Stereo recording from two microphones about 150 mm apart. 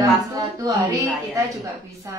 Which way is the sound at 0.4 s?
25° right (ahead or behind).